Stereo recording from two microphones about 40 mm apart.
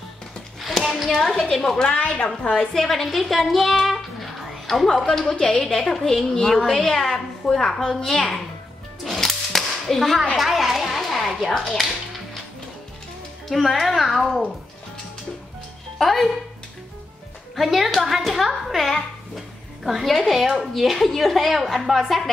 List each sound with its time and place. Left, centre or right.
0.8 s a child's voice: centre
1.5 s a woman's voice: centre
2.0 s a woman's voice: left
2.7 s a woman's voice: centre
5.2 s a woman's voice: left
5.5 s a woman's voice: centre
9.0 s whip: centre
10.3 s a sound: centre
11.4 s a woman's voice: centre
13.5 s speech: centre
16.0 s speech: centre
17.6 s speech: centre